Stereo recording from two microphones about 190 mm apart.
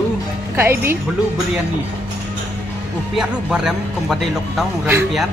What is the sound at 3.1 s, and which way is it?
A man's voice, 5° right (ahead or behind).